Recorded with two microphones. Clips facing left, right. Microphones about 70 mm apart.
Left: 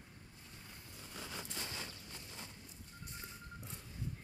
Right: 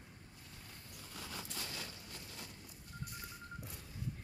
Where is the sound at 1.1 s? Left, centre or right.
Left.